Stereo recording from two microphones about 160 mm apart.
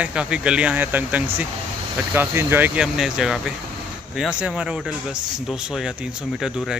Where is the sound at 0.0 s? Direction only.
5° right (ahead or behind).